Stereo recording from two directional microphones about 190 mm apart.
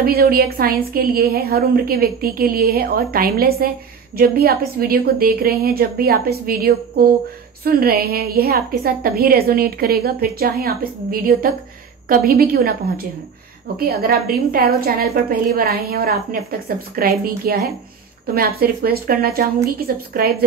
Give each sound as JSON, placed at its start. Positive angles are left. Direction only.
{"t": 0.0, "sound": "a woman's voice", "side_deg": -50}